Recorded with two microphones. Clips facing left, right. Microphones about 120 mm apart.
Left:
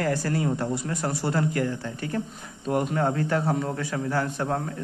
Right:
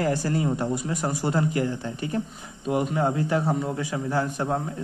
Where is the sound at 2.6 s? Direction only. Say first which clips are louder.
Right 1 dB; 5° right (ahead or behind).